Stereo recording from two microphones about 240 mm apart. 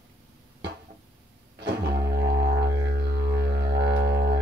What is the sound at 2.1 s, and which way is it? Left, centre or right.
Music, right.